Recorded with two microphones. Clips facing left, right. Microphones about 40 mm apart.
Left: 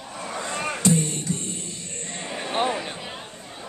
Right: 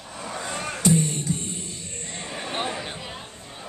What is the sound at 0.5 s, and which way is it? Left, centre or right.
Music, centre.